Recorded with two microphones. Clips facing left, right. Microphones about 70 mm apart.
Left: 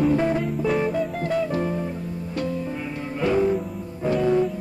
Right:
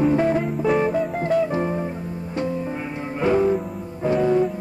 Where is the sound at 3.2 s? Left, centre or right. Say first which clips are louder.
Right 2 dB; right.